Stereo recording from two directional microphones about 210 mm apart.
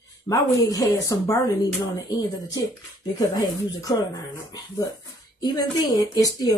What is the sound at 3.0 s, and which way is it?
Speech, 20° left (ahead or behind).